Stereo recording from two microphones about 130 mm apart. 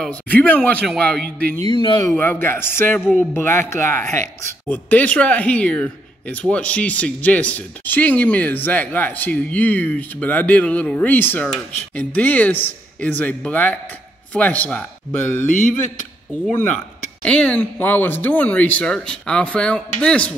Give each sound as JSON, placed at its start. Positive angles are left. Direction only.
{"t": 0.0, "sound": "a man's voice", "side_deg": 10}
{"t": 1.6, "sound": "speech", "side_deg": 35}
{"t": 2.0, "sound": "speech", "side_deg": 15}
{"t": 4.6, "sound": "speech", "side_deg": 10}
{"t": 16.5, "sound": "speech", "side_deg": 10}